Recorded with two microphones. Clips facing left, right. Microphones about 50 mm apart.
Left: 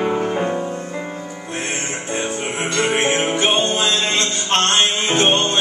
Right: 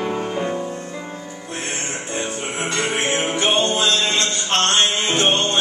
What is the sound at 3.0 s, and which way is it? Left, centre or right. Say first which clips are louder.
Music: left 2 dB; centre.